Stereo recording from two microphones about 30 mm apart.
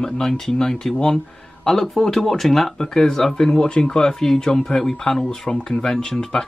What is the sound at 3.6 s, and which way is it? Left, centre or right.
Speech, left.